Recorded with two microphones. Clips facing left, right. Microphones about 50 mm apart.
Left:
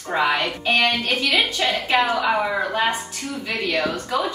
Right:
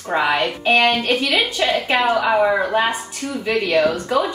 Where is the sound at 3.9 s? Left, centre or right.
Centre.